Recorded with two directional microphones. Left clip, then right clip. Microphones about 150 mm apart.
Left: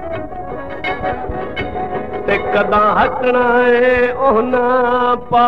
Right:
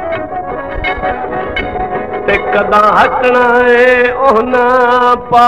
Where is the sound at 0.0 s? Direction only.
50° right (ahead or behind); by 1.5 s 30° right (ahead or behind).